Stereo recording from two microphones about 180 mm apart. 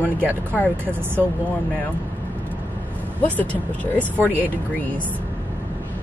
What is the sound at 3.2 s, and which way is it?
Speech, 10° left (ahead or behind).